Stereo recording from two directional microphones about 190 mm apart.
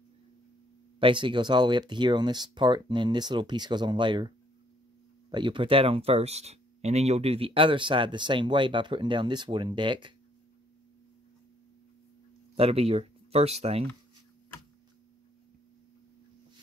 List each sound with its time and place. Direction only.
0.9 s speech: 25° right (ahead or behind)
5.3 s speech: 25° right (ahead or behind)
12.5 s speech: 30° right (ahead or behind)